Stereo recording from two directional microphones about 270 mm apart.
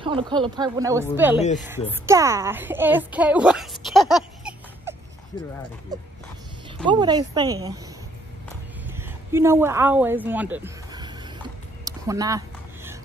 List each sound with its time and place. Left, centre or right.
0.0 s a woman's voice: centre
6.9 s speech: centre
8.9 s speech: centre
11.8 s a sound: centre